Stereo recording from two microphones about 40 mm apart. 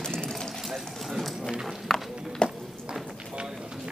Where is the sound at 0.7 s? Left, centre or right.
Centre.